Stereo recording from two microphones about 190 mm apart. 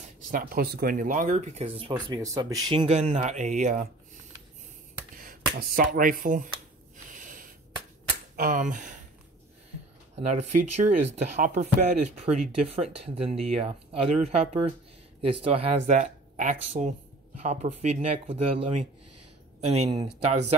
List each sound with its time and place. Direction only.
0.3 s speech: 50° right (ahead or behind)
5.1 s speech: 50° right (ahead or behind)
7.1 s a sound: 45° right (ahead or behind)
8.4 s speech: 45° right (ahead or behind)
10.2 s speech: 35° right (ahead or behind)